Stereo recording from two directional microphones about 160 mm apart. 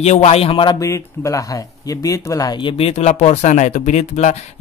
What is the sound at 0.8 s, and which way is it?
A man's voice, 20° left (ahead or behind).